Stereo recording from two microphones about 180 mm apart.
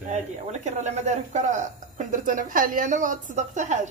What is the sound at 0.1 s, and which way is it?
Speech, 40° right (ahead or behind).